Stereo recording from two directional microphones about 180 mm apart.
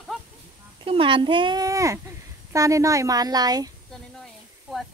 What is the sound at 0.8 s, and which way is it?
Speech, 30° right (ahead or behind).